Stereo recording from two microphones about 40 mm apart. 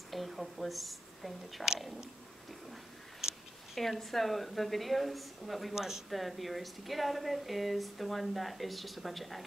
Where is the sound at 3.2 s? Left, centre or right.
Centre.